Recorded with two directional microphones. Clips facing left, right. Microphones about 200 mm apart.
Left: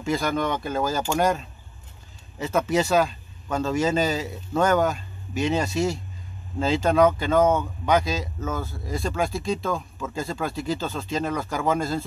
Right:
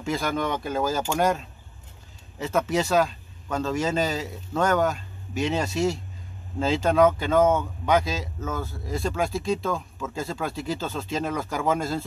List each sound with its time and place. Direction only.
0.0 s speech: centre (ahead or behind)